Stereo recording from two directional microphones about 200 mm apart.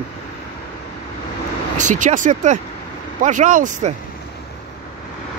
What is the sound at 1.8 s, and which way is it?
Speech, 40° right (ahead or behind).